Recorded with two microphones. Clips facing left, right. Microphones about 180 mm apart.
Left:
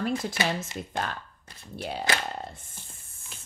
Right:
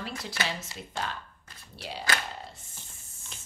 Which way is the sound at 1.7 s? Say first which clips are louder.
Left 6 dB; 50° left (ahead or behind).